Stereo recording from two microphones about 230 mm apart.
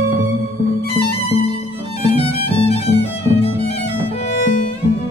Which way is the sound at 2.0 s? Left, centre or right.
Left.